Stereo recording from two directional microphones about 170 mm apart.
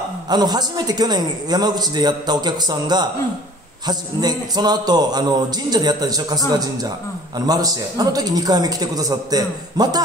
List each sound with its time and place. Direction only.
0.3 s a woman's voice: 25° right (ahead or behind)